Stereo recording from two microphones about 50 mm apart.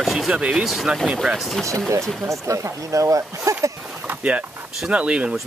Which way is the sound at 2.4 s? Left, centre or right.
Right.